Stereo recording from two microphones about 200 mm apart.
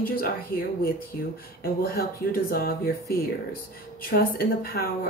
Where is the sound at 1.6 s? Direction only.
50° left (ahead or behind).